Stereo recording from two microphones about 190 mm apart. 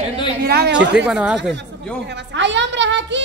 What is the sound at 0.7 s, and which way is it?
Speech, 5° right (ahead or behind).